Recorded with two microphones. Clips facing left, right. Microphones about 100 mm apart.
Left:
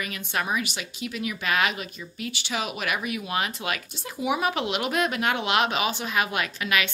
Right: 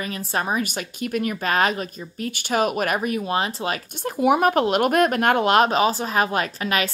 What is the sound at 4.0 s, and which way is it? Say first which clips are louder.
Speech: right 9 dB; 50° right (ahead or behind).